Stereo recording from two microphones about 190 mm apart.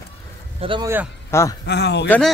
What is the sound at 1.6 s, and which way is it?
Speech, 60° left (ahead or behind).